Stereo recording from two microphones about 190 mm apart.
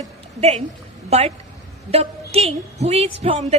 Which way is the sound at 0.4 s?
35° right (ahead or behind).